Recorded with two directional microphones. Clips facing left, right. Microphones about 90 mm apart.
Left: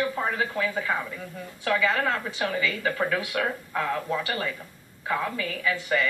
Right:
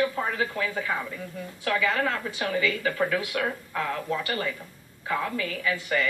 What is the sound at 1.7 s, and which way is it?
A woman's voice, 30° left (ahead or behind).